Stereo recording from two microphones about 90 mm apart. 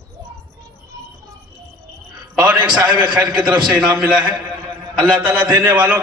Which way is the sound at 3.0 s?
55° right (ahead or behind).